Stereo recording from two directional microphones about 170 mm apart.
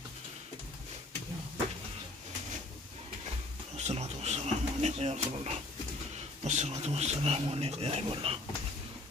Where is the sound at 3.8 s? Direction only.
40° right (ahead or behind).